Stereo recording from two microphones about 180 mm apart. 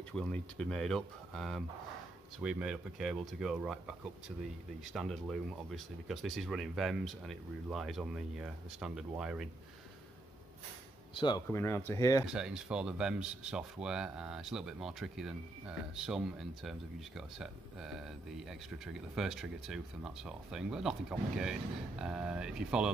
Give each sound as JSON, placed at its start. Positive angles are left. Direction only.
{"t": 0.1, "sound": "speech", "side_deg": 5}
{"t": 11.1, "sound": "speech", "side_deg": 25}
{"t": 11.4, "sound": "speech", "side_deg": 15}
{"t": 12.3, "sound": "speech", "side_deg": -5}